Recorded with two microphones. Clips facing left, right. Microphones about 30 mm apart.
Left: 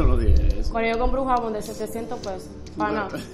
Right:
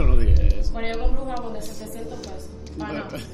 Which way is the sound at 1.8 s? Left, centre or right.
Left.